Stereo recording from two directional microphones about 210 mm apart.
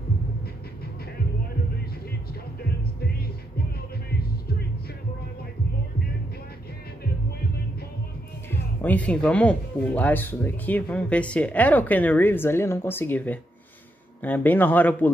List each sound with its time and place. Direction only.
4.2 s music: 50° left (ahead or behind)
8.5 s speech: 5° left (ahead or behind)